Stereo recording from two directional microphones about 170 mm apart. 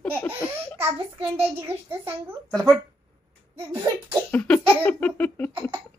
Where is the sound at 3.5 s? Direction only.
15° right (ahead or behind).